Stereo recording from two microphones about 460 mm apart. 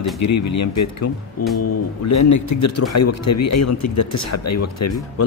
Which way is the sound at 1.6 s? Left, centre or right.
Left.